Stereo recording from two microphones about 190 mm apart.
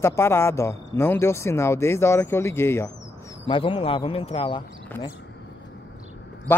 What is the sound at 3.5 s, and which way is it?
Speech, 25° left (ahead or behind).